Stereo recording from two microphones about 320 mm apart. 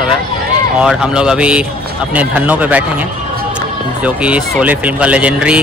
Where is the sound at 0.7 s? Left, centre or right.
Centre.